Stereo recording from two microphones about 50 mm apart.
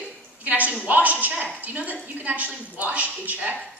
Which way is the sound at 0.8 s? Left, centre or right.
Right.